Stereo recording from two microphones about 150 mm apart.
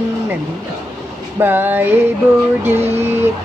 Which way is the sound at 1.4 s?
15° right (ahead or behind).